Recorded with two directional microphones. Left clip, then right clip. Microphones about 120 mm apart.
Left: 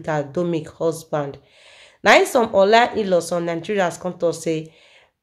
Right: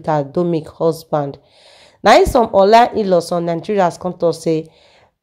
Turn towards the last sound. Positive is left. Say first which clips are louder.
# right 5 dB
turn(degrees=-45)  # may be behind; listen again after turning